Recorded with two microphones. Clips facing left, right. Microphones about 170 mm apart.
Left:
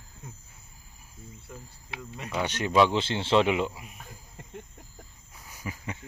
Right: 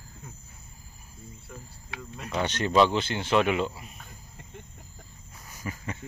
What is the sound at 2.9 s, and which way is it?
Speech, 25° left (ahead or behind).